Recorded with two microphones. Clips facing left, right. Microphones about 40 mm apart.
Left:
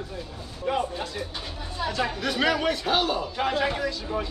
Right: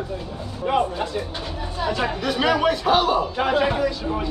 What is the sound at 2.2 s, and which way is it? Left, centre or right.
A man's voice, centre.